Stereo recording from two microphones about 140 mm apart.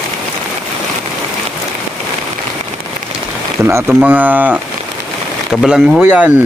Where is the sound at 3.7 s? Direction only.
15° right (ahead or behind).